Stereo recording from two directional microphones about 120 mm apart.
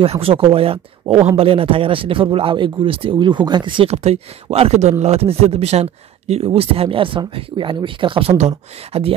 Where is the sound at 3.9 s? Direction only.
60° right (ahead or behind); by 8.3 s 45° right (ahead or behind).